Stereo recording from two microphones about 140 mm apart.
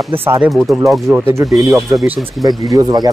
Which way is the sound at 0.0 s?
15° right (ahead or behind).